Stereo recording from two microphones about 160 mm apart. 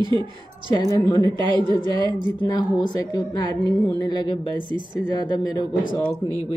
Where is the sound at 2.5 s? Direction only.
25° left (ahead or behind).